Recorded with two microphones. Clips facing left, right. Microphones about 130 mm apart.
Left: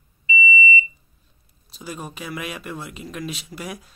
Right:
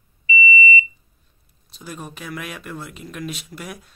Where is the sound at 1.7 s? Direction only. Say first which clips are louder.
Left 1 dB; 5° left (ahead or behind).